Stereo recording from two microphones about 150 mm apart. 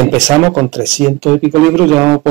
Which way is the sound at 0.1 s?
Centre (ahead or behind).